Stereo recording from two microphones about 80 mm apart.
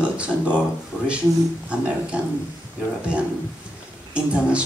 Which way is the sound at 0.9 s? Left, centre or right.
Left.